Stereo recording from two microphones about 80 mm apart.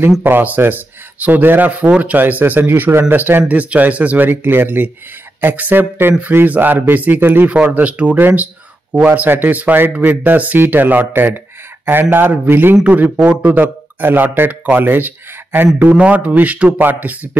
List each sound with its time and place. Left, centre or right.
0.2 s speech: right